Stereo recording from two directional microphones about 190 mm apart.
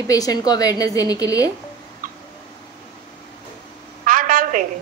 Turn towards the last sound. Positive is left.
turn(degrees=-45)  # may be behind; listen again after turning